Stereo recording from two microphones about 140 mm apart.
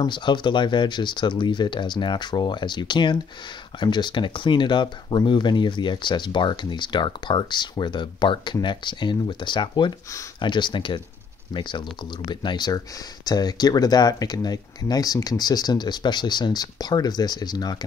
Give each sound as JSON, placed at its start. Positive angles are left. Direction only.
{"t": 0.0, "sound": "speech", "side_deg": 35}